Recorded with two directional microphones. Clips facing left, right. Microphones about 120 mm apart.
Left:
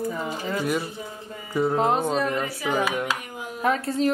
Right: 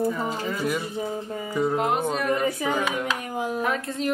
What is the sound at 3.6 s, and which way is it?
Speech, 35° left (ahead or behind).